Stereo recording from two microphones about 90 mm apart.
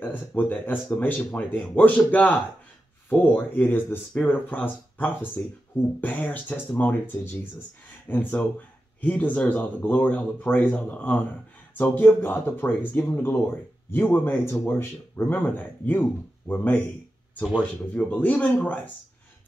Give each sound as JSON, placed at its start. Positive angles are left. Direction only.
{"t": 0.0, "sound": "speech", "side_deg": 20}
{"t": 17.9, "sound": "speech", "side_deg": 15}